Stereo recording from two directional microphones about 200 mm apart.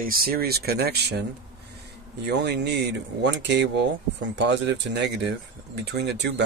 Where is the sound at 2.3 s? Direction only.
60° right (ahead or behind).